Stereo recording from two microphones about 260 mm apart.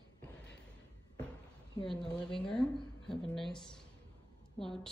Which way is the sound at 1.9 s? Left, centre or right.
Centre.